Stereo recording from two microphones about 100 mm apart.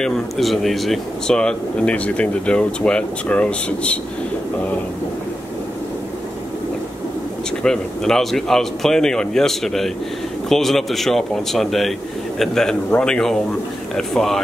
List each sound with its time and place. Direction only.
0.0 s speech: centre (ahead or behind)
7.6 s speech: 5° left (ahead or behind)